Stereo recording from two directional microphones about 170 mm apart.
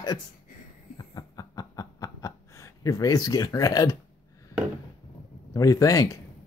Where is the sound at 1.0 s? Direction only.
20° left (ahead or behind).